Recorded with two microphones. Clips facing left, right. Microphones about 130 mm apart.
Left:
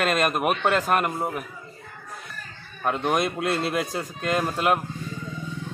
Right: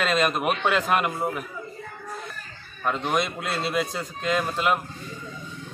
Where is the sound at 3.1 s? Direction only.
55° left (ahead or behind).